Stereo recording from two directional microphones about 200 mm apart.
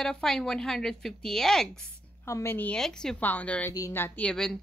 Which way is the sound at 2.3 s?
10° left (ahead or behind).